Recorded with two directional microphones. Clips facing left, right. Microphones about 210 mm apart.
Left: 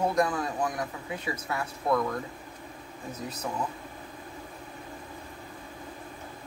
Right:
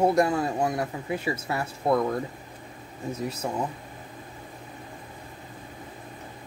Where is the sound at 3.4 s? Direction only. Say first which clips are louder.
Right 3 dB; 30° right (ahead or behind).